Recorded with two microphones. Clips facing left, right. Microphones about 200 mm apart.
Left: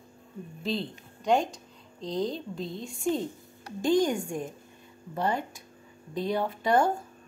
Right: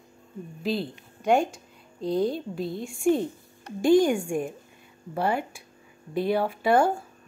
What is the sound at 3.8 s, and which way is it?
A woman's voice, 10° right (ahead or behind).